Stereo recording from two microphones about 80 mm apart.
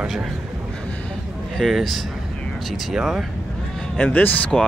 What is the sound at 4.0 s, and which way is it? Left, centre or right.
Speech, centre.